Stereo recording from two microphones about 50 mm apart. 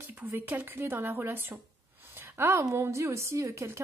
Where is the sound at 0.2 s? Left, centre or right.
Right.